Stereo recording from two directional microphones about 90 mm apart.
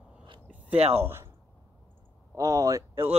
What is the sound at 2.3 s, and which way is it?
Speech, 40° right (ahead or behind).